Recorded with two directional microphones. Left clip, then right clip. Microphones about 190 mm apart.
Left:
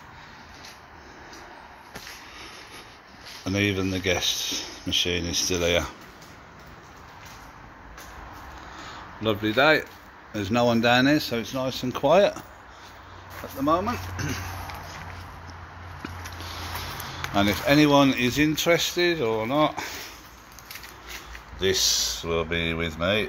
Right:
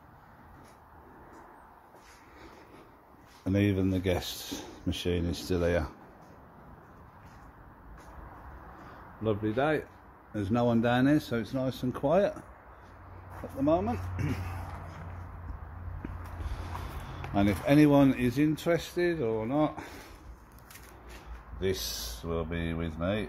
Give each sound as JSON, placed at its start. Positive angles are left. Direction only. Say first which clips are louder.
{"t": 3.4, "sound": "speech", "louder": "left 4 dB", "side_deg": -25}
{"t": 5.5, "sound": "speech", "louder": "left 4 dB", "side_deg": -15}
{"t": 9.2, "sound": "speech", "louder": "left 8 dB", "side_deg": -5}
{"t": 13.6, "sound": "speech", "louder": "left 4 dB", "side_deg": -10}
{"t": 17.3, "sound": "speech", "louder": "left 5 dB", "side_deg": -10}
{"t": 21.5, "sound": "speech", "louder": "left 10 dB", "side_deg": 0}